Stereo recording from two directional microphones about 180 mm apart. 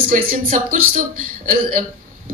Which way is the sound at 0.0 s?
50° right (ahead or behind).